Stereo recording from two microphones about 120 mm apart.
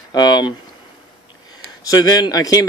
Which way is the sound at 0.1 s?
35° left (ahead or behind).